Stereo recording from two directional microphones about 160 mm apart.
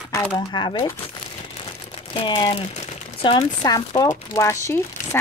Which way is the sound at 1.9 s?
35° left (ahead or behind).